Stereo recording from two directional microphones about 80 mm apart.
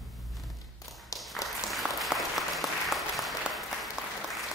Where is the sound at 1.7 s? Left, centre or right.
Centre.